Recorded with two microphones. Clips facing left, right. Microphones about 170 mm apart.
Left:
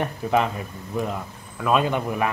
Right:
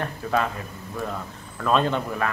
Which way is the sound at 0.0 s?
15° left (ahead or behind).